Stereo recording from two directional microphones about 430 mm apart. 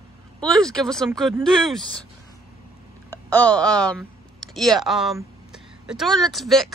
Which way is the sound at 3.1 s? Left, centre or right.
Centre.